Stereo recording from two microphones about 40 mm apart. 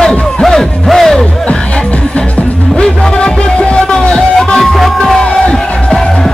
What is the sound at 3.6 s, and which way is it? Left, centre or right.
Music, left.